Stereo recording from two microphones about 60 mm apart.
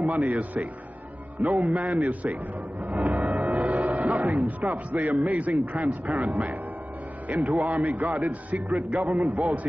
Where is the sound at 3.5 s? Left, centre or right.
Right.